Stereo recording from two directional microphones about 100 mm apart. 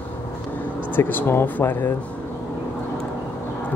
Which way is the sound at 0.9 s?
20° left (ahead or behind).